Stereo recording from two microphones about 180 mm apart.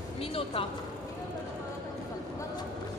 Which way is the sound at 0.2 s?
30° left (ahead or behind).